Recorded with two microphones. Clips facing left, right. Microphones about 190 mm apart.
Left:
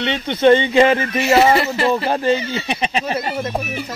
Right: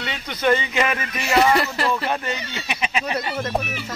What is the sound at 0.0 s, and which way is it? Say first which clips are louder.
Speech: left 8 dB; 25° left (ahead or behind).